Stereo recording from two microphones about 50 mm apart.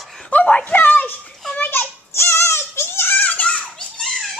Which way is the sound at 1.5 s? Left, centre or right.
Left.